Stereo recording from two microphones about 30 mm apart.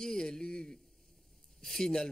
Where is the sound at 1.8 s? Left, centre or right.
Left.